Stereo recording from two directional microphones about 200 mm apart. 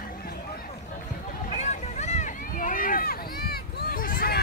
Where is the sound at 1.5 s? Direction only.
35° left (ahead or behind).